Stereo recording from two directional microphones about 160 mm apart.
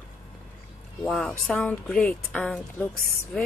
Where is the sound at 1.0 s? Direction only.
5° left (ahead or behind).